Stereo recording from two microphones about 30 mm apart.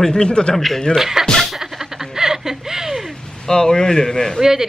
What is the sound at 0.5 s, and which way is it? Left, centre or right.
Speech, centre.